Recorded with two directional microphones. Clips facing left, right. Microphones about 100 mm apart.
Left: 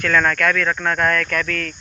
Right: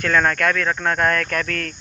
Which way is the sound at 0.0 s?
25° right (ahead or behind).